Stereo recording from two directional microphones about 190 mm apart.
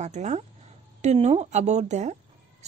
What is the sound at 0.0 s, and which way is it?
A woman's voice, 35° right (ahead or behind).